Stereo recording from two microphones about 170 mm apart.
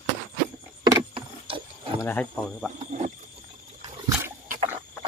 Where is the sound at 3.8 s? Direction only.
20° right (ahead or behind).